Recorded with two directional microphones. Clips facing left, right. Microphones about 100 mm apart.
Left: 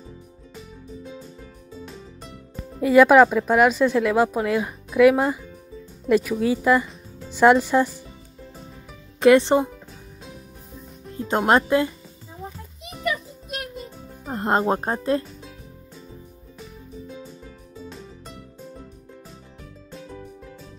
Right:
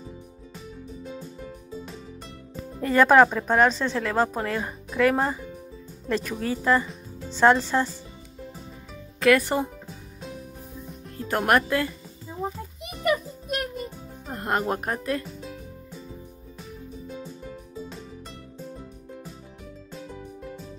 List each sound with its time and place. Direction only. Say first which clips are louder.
0.6 s music: left 1 dB; 5° right (ahead or behind)
2.8 s speech: left 4 dB; 10° left (ahead or behind)
9.2 s speech: left 5 dB; 25° left (ahead or behind)
11.1 s speech: left 3 dB; 20° left (ahead or behind)
12.8 s music: right 2 dB; 50° right (ahead or behind)
14.3 s speech: left 5 dB; 30° left (ahead or behind)
15.2 s music: right 4 dB; centre (ahead or behind)
17.2 s music: right 2 dB; centre (ahead or behind)
19.9 s music: left 1 dB; centre (ahead or behind)